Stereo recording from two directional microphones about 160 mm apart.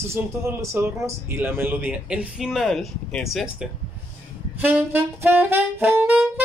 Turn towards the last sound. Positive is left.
turn(degrees=-10)  # may be behind; listen again after turning